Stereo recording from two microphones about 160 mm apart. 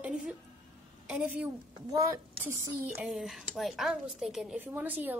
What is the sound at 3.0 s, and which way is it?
A woman's voice, centre (ahead or behind).